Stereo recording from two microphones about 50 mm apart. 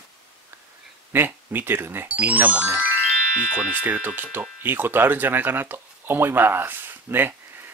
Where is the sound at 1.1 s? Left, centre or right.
Right.